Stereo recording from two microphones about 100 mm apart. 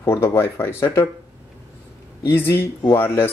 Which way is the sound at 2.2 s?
20° left (ahead or behind).